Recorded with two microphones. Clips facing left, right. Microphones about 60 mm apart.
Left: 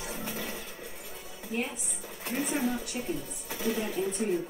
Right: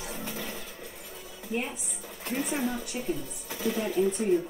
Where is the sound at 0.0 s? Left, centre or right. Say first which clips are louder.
Even; centre.